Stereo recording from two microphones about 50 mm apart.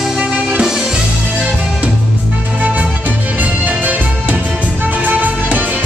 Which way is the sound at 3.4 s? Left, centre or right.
Right.